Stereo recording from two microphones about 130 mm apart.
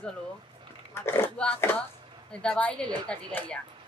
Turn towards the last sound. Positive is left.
turn(degrees=10)  # may be behind; listen again after turning